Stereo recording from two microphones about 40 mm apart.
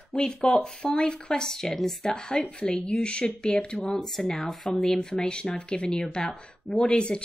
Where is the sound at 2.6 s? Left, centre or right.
Left.